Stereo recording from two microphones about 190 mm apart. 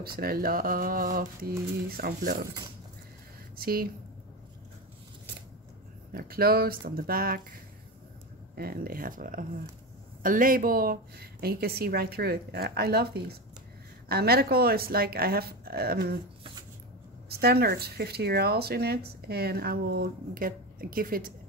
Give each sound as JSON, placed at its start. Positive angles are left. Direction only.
{"t": 0.0, "sound": "speech", "side_deg": -50}
{"t": 3.5, "sound": "speech", "side_deg": -50}
{"t": 6.1, "sound": "speech", "side_deg": -50}
{"t": 8.5, "sound": "speech", "side_deg": -50}
{"t": 17.3, "sound": "speech", "side_deg": -55}